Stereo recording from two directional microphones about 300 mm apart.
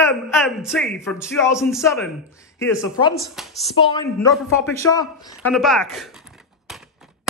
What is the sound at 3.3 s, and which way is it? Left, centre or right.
Speech, centre.